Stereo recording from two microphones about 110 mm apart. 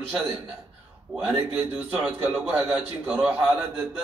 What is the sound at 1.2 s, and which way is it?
A man's voice, 15° right (ahead or behind).